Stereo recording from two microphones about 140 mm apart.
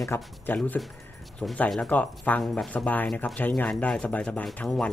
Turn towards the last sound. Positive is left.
turn(degrees=5)  # may be behind; listen again after turning